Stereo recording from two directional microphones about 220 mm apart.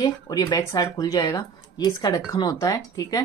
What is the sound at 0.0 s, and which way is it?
Speech, 15° left (ahead or behind).